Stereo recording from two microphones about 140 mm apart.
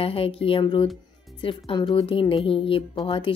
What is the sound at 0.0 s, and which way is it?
Speech, 40° left (ahead or behind).